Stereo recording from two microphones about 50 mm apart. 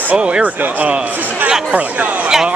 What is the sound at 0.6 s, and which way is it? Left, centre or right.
Speech, right.